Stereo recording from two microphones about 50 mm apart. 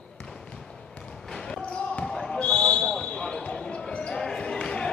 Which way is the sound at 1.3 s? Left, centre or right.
Centre.